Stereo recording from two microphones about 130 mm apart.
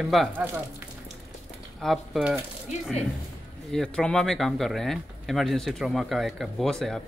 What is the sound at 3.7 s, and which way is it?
Speech, 5° left (ahead or behind).